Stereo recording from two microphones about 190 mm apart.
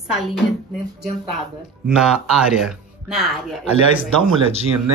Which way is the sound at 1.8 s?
5° right (ahead or behind).